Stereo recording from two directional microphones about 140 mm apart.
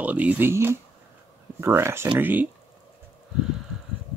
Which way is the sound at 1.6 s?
20° right (ahead or behind).